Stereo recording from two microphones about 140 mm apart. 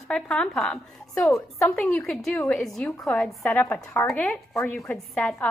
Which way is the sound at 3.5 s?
15° left (ahead or behind).